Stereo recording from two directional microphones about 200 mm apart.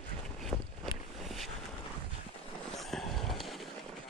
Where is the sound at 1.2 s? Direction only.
Centre (ahead or behind).